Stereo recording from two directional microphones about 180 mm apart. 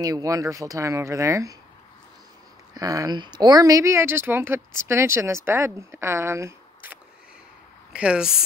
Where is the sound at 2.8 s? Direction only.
20° right (ahead or behind).